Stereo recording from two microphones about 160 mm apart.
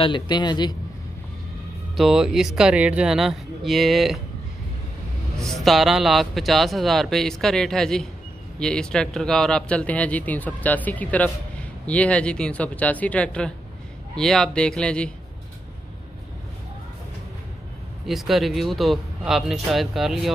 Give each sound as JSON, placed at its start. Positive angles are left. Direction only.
{"t": 0.0, "sound": "a man's voice", "side_deg": 30}
{"t": 2.0, "sound": "speech", "side_deg": -5}
{"t": 5.4, "sound": "speech", "side_deg": 0}
{"t": 18.0, "sound": "speech", "side_deg": 0}